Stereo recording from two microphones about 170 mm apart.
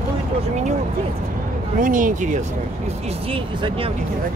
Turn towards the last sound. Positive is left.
turn(degrees=-30)  # may be behind; listen again after turning